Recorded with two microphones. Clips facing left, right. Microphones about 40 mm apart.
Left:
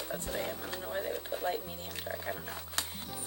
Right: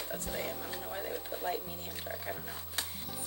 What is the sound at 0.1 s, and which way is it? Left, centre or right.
Speech, centre.